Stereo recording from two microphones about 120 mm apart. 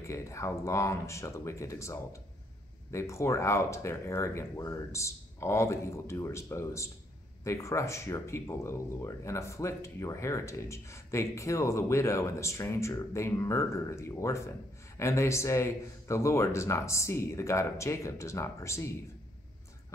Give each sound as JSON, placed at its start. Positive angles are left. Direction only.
{"t": 0.0, "sound": "speech", "side_deg": 25}